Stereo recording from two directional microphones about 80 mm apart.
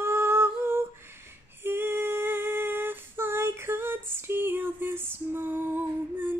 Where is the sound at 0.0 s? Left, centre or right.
Right.